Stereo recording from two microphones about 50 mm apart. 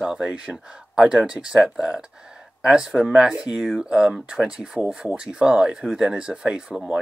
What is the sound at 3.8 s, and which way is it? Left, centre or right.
Speech, centre.